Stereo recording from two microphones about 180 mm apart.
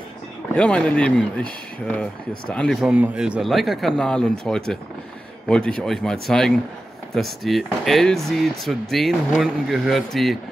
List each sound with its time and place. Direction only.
0.6 s speech: 5° left (ahead or behind)